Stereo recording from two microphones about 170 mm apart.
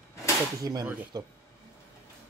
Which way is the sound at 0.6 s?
25° right (ahead or behind).